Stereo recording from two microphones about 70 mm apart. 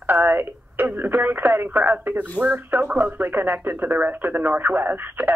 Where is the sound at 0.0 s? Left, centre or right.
Right.